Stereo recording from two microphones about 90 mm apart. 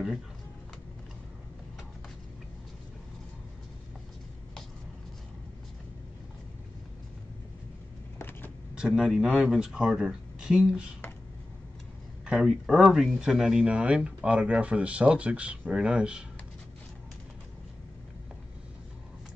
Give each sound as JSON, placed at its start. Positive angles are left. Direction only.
{"t": 8.2, "sound": "vehicle", "side_deg": 25}
{"t": 8.7, "sound": "speech", "side_deg": -5}
{"t": 12.3, "sound": "speech", "side_deg": -10}